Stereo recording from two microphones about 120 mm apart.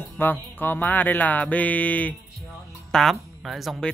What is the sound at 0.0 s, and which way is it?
Music, 15° left (ahead or behind).